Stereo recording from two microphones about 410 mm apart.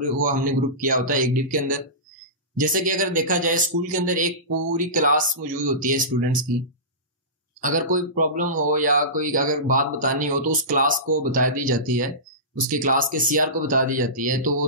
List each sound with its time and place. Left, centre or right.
0.2 s speech: centre
7.6 s speech: centre